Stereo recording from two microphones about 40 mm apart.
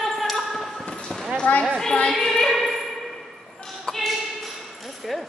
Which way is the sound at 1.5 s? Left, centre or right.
Left.